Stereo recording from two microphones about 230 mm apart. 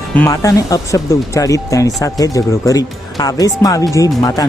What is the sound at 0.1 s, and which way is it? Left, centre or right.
Speech, centre.